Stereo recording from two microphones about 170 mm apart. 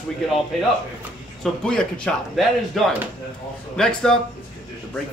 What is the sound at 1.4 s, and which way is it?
Speech, 5° left (ahead or behind).